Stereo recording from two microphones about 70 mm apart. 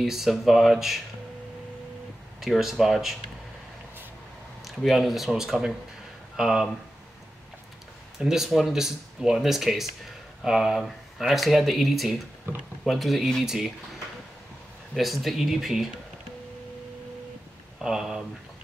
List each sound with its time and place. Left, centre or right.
0.0 s speech: centre
2.4 s speech: centre
4.6 s speech: centre
8.2 s speech: centre
15.0 s speech: centre
17.8 s speech: centre